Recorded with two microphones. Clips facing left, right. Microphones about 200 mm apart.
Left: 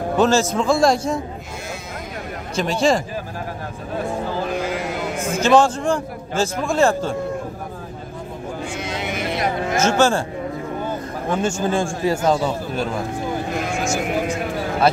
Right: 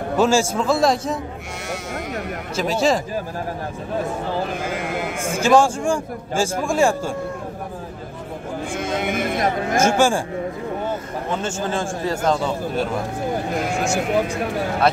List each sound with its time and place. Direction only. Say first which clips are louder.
0.2 s a man's voice: left 1 dB; 10° right (ahead or behind)
2.5 s a man's voice: left 1 dB; 5° right (ahead or behind)
4.6 s sheep: left 1 dB; 50° right (ahead or behind)
5.2 s a man's voice: left 1 dB; 10° right (ahead or behind)
8.7 s a sound: right 6 dB; 50° right (ahead or behind)
9.8 s a man's voice: even; 10° right (ahead or behind)
11.3 s a man's voice: left 4 dB; 10° left (ahead or behind)